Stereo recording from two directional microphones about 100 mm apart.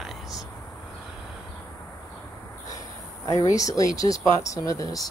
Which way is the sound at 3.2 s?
35° left (ahead or behind).